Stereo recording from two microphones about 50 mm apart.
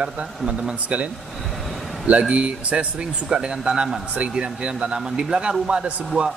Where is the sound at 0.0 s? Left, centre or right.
Right.